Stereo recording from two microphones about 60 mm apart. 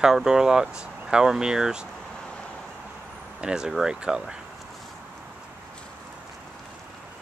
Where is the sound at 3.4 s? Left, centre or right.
Centre.